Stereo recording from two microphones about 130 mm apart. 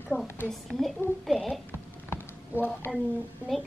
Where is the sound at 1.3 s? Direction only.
Centre (ahead or behind).